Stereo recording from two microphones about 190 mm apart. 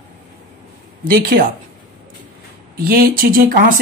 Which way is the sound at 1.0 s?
50° right (ahead or behind).